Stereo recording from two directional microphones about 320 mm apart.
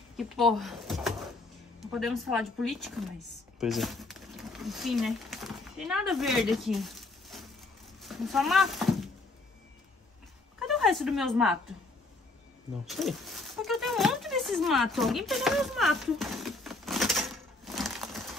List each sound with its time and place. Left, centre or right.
0.2 s a woman's voice: centre
10.7 s a woman's voice: centre
12.8 s a sound: centre